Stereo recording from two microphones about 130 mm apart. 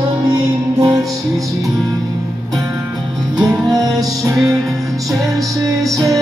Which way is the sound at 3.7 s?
30° right (ahead or behind).